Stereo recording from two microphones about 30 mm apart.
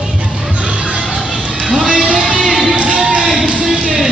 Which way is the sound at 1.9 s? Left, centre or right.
Right.